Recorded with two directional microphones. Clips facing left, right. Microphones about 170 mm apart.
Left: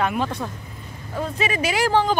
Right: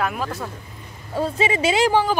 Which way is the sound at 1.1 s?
30° right (ahead or behind).